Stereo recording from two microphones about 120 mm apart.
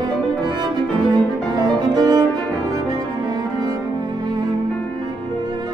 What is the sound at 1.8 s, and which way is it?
Music, 35° right (ahead or behind).